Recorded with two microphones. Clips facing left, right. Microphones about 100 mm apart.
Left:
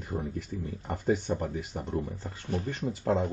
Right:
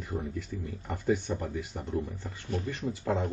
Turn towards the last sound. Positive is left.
turn(degrees=45)  # may be behind; listen again after turning